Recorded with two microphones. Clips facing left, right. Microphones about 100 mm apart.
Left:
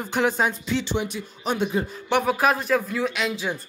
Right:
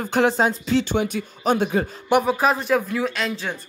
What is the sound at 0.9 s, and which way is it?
Speech, 50° right (ahead or behind).